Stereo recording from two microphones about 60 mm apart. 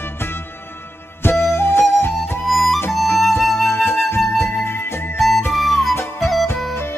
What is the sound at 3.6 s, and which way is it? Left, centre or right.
Flute, left.